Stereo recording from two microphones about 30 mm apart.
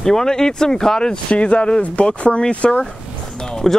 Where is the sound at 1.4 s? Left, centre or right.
Left.